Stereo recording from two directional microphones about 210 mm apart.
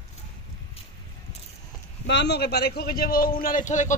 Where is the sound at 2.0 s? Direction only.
55° left (ahead or behind); by 4.0 s 35° left (ahead or behind).